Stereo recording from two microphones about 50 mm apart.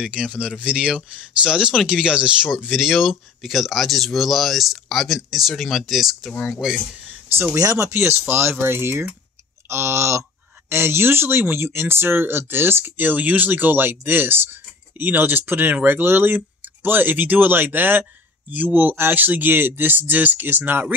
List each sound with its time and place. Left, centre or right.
0.1 s speech: right
7.5 s speech: right
7.9 s speech: right
9.7 s speech: right
10.7 s speech: right